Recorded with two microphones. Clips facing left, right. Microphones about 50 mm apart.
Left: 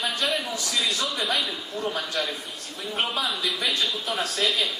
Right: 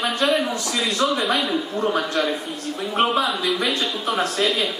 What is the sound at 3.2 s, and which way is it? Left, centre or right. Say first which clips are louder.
Speech: right 5 dB; centre.